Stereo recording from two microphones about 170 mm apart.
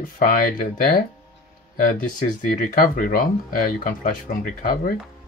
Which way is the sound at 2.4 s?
55° left (ahead or behind).